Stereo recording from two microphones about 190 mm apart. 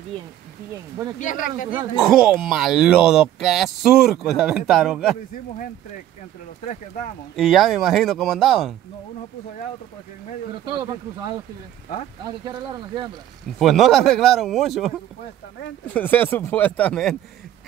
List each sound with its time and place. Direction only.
1.2 s speech: 45° left (ahead or behind)
2.0 s speech: 5° right (ahead or behind)
7.3 s speech: centre (ahead or behind)
10.6 s speech: 25° right (ahead or behind)
12.4 s speech: 25° right (ahead or behind)
13.6 s speech: centre (ahead or behind)
15.9 s speech: 10° left (ahead or behind)